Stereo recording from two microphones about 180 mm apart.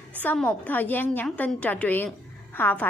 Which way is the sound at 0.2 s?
10° left (ahead or behind).